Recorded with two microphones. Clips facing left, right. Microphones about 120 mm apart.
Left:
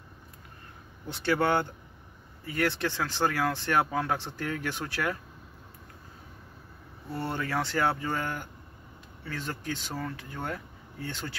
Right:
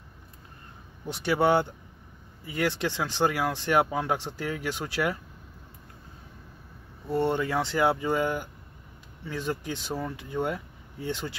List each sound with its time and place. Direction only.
1.0 s speech: 15° right (ahead or behind)
7.1 s speech: 20° right (ahead or behind)